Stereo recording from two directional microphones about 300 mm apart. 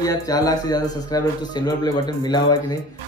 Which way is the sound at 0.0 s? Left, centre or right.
Centre.